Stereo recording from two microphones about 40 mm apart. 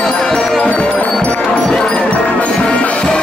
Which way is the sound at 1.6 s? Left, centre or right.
Centre.